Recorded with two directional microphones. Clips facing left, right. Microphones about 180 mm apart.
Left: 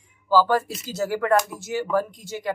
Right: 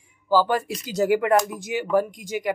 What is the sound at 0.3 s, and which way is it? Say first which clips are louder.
Speech: left 1 dB; 15° right (ahead or behind).